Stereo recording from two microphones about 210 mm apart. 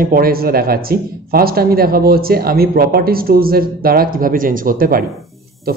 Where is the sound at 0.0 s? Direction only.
45° right (ahead or behind).